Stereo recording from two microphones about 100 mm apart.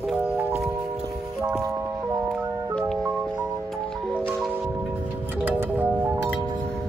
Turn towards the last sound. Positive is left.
turn(degrees=-20)  # may be behind; listen again after turning